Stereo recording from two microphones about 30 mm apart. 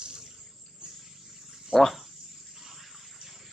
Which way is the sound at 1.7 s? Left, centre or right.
Centre.